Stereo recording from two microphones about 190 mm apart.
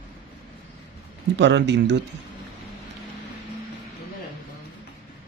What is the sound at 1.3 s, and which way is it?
Speech, 65° right (ahead or behind).